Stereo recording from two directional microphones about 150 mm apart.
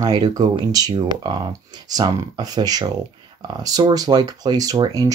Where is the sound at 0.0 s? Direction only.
25° right (ahead or behind).